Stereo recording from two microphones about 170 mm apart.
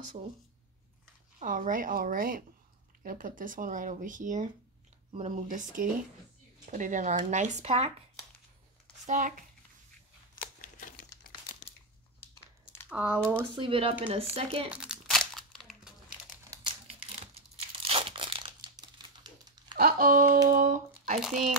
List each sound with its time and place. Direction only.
1.4 s a woman's voice: 50° right (ahead or behind)
9.0 s speech: 45° right (ahead or behind)
10.6 s crumpling: 50° left (ahead or behind)
12.9 s speech: 10° right (ahead or behind)
13.6 s speech: 30° right (ahead or behind)
14.7 s crumpling: 5° right (ahead or behind)
16.6 s tearing: 35° right (ahead or behind)
19.8 s speech: 55° right (ahead or behind)
21.2 s speech: centre (ahead or behind)